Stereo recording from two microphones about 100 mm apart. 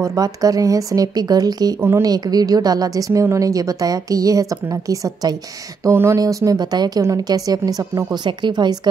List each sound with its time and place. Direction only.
0.0 s a woman's voice: 35° right (ahead or behind)
1.8 s a woman's voice: 25° right (ahead or behind)
2.0 s a woman's voice: 40° right (ahead or behind)